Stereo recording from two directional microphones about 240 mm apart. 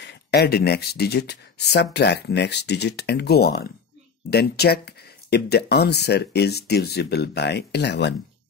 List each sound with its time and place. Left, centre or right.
0.0 s speech: left